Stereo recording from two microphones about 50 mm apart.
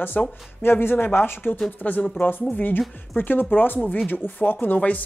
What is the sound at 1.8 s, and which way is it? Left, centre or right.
A woman's voice, left.